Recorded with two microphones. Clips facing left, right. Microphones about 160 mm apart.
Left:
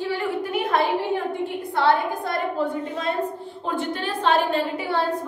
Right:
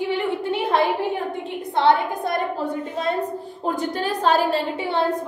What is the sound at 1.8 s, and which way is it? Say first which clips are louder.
Speech: right 2 dB; 20° right (ahead or behind).